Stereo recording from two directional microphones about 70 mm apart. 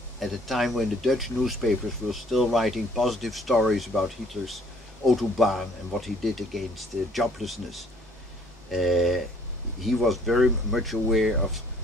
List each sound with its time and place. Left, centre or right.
0.2 s speech: centre